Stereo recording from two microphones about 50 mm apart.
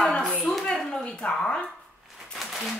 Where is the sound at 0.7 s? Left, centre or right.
Centre.